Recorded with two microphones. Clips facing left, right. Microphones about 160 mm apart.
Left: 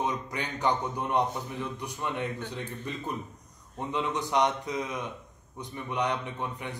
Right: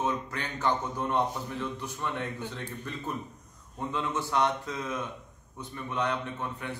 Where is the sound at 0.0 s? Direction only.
15° left (ahead or behind).